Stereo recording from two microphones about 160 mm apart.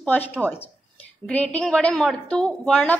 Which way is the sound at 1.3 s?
10° left (ahead or behind).